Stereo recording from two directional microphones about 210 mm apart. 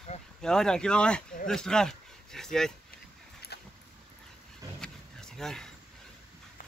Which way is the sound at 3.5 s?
50° left (ahead or behind).